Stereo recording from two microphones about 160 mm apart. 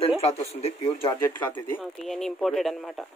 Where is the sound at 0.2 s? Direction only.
40° left (ahead or behind).